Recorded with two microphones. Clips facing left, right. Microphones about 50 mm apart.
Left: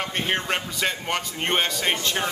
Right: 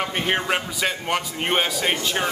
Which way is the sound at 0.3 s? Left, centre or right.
Centre.